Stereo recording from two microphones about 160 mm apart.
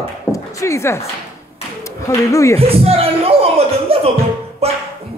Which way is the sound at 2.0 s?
20° left (ahead or behind).